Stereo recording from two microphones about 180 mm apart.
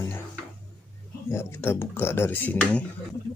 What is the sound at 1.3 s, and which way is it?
Speech, 15° left (ahead or behind).